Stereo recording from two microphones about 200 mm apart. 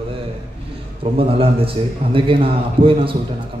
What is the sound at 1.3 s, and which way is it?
A man's voice, 30° right (ahead or behind).